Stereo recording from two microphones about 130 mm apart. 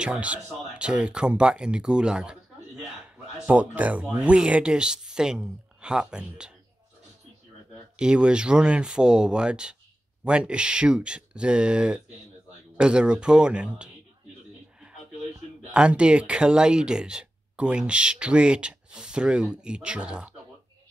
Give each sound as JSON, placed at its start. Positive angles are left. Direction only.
{"t": 0.0, "sound": "speech", "side_deg": -10}
{"t": 7.9, "sound": "speech", "side_deg": -5}
{"t": 15.7, "sound": "speech", "side_deg": -10}